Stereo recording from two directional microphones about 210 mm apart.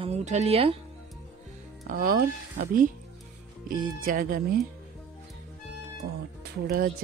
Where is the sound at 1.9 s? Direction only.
45° right (ahead or behind).